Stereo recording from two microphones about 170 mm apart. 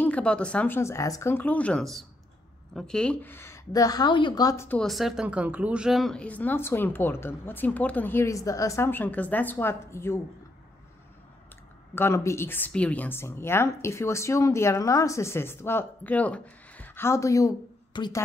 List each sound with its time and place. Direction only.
0.0 s a woman's voice: 5° left (ahead or behind)
4.6 s a woman's voice: 5° left (ahead or behind)
11.9 s a woman's voice: 15° left (ahead or behind)